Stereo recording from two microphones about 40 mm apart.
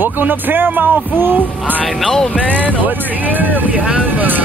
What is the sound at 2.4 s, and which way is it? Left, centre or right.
Speech, right.